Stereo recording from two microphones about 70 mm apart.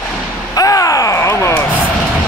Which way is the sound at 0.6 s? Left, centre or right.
Left.